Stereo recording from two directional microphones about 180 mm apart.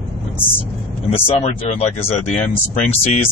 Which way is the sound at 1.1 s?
30° left (ahead or behind).